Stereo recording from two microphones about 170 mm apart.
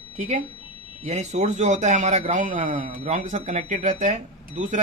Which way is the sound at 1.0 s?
40° right (ahead or behind).